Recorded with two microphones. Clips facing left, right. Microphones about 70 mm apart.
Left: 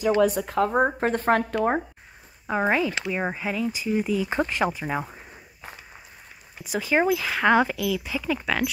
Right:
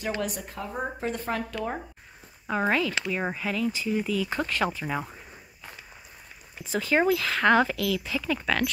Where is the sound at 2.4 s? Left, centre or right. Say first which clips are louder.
Left 2 dB; centre.